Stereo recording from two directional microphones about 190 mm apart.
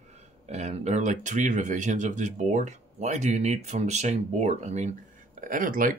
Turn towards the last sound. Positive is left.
turn(degrees=-45)  # may be behind; listen again after turning